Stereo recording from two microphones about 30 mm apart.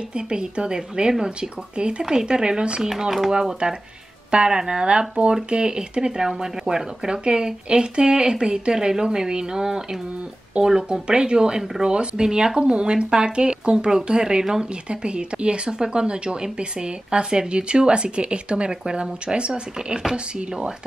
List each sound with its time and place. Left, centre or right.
0.1 s speech: right
3.0 s speech: centre
3.6 s speech: right
14.9 s speech: right